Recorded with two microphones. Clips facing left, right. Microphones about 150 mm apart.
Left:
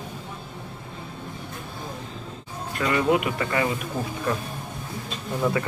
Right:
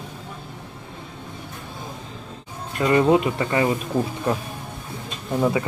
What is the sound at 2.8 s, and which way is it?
Speech, 30° right (ahead or behind).